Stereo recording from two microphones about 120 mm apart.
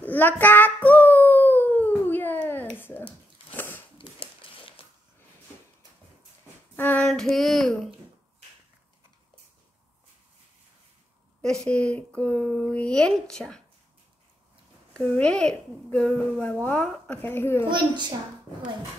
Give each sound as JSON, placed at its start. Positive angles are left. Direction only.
{"t": 0.0, "sound": "child singing", "side_deg": 15}
{"t": 3.5, "sound": "a sound", "side_deg": 15}
{"t": 4.0, "sound": "a sound", "side_deg": 45}
{"t": 6.8, "sound": "child singing", "side_deg": 15}
{"t": 7.1, "sound": "speech", "side_deg": 5}
{"t": 11.4, "sound": "speech", "side_deg": 5}
{"t": 15.0, "sound": "speech", "side_deg": 10}
{"t": 17.6, "sound": "a woman's voice", "side_deg": -40}